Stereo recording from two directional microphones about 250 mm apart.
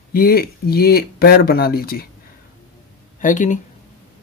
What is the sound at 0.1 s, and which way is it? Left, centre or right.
Speech, left.